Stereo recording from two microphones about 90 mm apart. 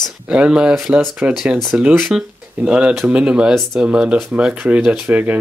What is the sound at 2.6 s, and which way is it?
Speech, 15° right (ahead or behind).